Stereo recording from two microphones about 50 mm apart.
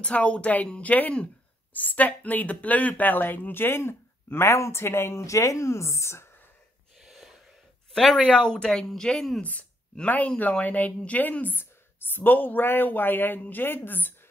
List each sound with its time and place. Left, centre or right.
0.0 s speech: left
1.7 s a woman's voice: left
7.0 s gasp: centre
7.9 s speech: centre
9.4 s speech: left